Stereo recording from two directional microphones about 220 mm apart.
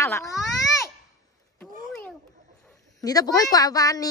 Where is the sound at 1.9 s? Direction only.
5° left (ahead or behind).